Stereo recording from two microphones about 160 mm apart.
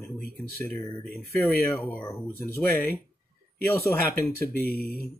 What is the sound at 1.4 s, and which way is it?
Speech, 10° left (ahead or behind).